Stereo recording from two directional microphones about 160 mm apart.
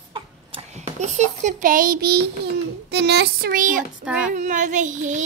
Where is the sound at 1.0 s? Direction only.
45° right (ahead or behind); by 2.2 s 75° right (ahead or behind).